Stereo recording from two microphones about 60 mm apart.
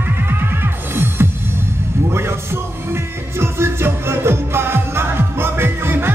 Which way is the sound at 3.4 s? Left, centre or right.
Right.